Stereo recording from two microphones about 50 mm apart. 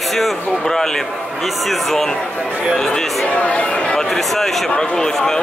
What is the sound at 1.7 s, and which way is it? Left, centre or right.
A man's voice, centre.